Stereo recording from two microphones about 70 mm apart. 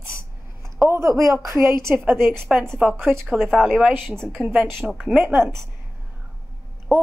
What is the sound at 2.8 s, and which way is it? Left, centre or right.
Speech, centre.